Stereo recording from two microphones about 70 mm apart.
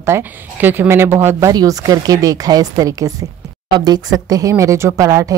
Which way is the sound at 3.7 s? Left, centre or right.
Right.